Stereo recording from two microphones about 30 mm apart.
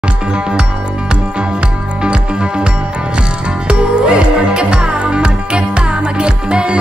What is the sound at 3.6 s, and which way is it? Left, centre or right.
Music, right.